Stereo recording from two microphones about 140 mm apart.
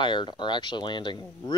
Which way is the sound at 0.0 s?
35° left (ahead or behind).